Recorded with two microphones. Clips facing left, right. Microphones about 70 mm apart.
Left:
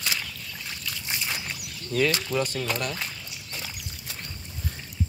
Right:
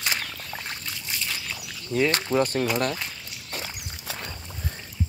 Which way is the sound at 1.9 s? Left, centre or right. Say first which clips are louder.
Right 2 dB; right.